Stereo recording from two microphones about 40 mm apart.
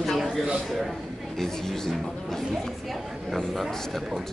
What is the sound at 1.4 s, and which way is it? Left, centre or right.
Speech, centre.